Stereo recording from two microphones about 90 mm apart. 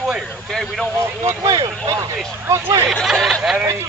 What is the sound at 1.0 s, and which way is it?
Speech, 30° right (ahead or behind).